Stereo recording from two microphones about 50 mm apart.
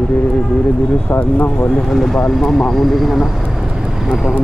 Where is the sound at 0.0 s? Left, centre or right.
Centre.